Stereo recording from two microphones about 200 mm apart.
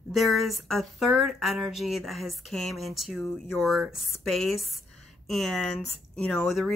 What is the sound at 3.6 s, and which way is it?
A woman's voice, centre (ahead or behind).